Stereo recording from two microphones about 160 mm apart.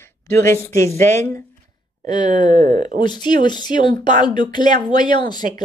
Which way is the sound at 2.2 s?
55° right (ahead or behind).